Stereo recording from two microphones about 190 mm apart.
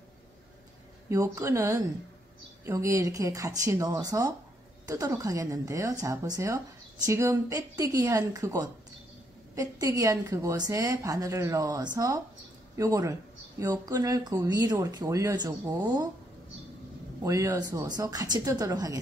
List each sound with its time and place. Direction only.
1.0 s a woman's voice: 15° right (ahead or behind)
17.2 s speech: 15° right (ahead or behind)